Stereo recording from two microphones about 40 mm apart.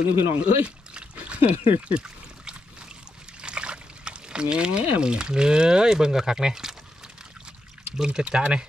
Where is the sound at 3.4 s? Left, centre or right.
Right.